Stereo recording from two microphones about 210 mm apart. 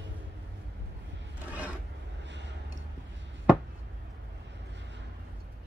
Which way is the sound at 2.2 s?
55° right (ahead or behind).